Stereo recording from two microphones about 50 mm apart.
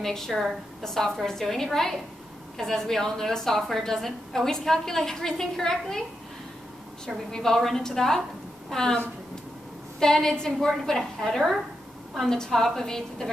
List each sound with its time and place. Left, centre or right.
0.0 s a woman's voice: centre
7.2 s a woman's voice: centre